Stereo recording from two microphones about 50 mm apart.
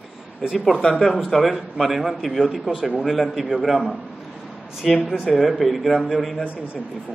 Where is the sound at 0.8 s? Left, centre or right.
Centre.